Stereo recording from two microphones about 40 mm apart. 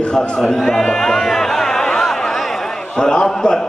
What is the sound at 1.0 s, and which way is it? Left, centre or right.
Music, centre.